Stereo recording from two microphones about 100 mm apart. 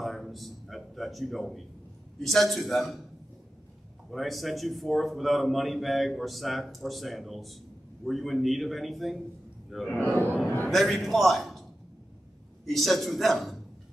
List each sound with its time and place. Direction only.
0.0 s a sound: centre (ahead or behind)
2.2 s a man's voice: centre (ahead or behind)
4.1 s a man's voice: centre (ahead or behind)
10.0 s speech: 30° right (ahead or behind)
10.7 s a man's voice: centre (ahead or behind)
12.6 s a man's voice: centre (ahead or behind)